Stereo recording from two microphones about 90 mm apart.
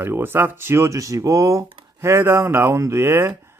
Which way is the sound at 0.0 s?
25° right (ahead or behind).